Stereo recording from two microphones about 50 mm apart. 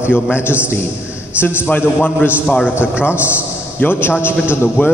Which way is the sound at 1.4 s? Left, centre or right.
Left.